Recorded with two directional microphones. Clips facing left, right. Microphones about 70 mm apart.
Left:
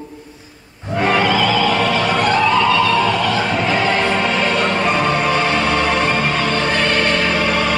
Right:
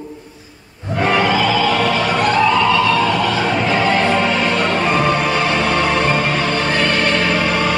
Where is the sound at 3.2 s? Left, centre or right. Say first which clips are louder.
Right 1 dB; centre.